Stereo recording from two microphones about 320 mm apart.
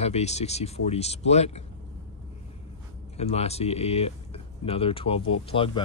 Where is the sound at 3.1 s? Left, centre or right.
Centre.